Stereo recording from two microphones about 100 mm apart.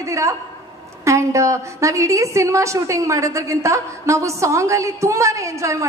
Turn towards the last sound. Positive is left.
turn(degrees=-30)  # may be behind; listen again after turning